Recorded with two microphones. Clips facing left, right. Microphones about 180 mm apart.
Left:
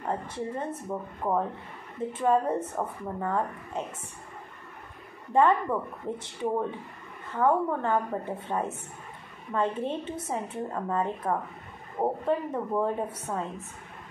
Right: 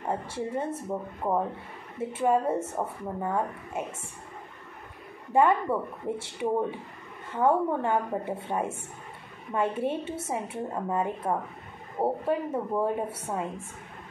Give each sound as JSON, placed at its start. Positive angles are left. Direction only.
{"t": 0.0, "sound": "speech", "side_deg": -10}
{"t": 5.3, "sound": "speech", "side_deg": -10}